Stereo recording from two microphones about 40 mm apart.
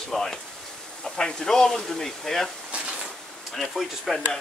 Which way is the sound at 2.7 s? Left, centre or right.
Right.